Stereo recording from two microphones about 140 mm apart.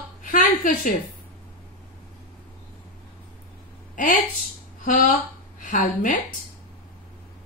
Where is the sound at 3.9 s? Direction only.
70° left (ahead or behind).